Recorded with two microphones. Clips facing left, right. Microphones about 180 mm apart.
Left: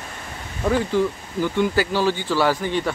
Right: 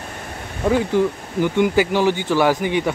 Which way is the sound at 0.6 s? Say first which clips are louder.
Right 3 dB; 15° right (ahead or behind).